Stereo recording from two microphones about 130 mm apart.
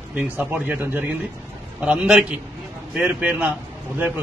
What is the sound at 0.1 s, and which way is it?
A man's voice, 10° right (ahead or behind).